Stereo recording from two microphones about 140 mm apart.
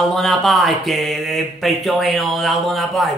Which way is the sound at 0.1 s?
Centre (ahead or behind).